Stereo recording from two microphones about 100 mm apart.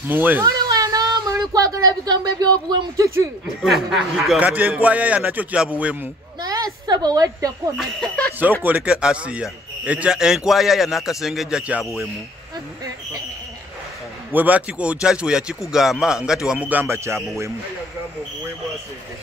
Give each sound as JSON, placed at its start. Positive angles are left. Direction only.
{"t": 0.1, "sound": "speech", "side_deg": -20}
{"t": 0.4, "sound": "a sound", "side_deg": -40}
{"t": 3.6, "sound": "speech", "side_deg": 0}
{"t": 4.4, "sound": "a man's voice", "side_deg": -15}
{"t": 6.4, "sound": "a woman's voice", "side_deg": -40}
{"t": 7.7, "sound": "speech", "side_deg": 0}
{"t": 8.6, "sound": "a man's voice", "side_deg": -15}
{"t": 14.3, "sound": "a man's voice", "side_deg": -15}
{"t": 16.8, "sound": "speech", "side_deg": -25}